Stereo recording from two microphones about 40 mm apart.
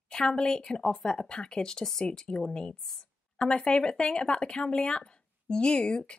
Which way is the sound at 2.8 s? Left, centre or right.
Centre.